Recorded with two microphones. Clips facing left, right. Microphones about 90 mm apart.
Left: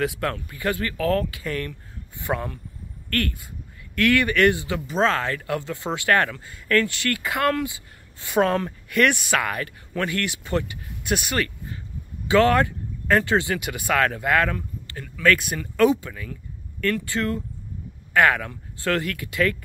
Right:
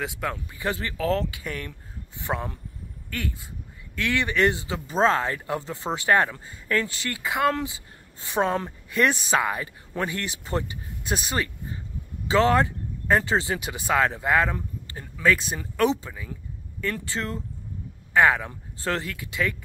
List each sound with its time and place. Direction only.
0.0 s speech: 10° right (ahead or behind); by 5.3 s 30° right (ahead or behind)
5.7 s speech: centre (ahead or behind)
6.3 s speech: 25° right (ahead or behind)
8.4 s speech: 10° right (ahead or behind)
8.9 s speech: 30° right (ahead or behind)
10.0 s speech: 30° right (ahead or behind)
12.3 s speech: 20° right (ahead or behind)
16.1 s speech: 10° right (ahead or behind)
18.1 s speech: 10° right (ahead or behind)